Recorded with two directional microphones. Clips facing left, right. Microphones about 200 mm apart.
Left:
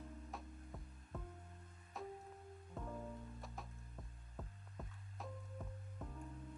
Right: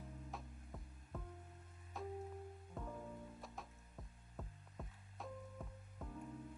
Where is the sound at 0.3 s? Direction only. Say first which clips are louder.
Left 1 dB; centre (ahead or behind).